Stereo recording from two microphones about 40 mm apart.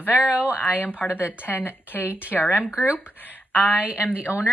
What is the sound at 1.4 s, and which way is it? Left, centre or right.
Speech, left.